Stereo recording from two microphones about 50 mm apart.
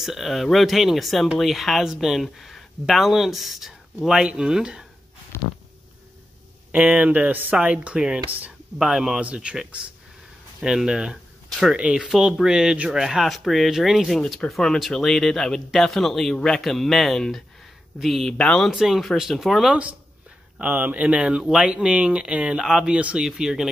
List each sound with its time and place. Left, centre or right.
0.0 s speech: centre
4.2 s speech: centre
5.3 s a sound: left
6.7 s speech: right
8.8 s speech: centre
10.6 s speech: centre
12.4 s speech: centre
14.1 s speech: centre
18.4 s speech: centre
18.7 s speech: centre
19.7 s speech: right
22.6 s speech: centre
22.9 s speech: right
23.2 s speech: centre